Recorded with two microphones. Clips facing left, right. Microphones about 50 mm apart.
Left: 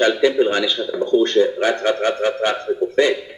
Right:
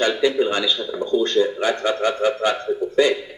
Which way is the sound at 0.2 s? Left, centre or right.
Left.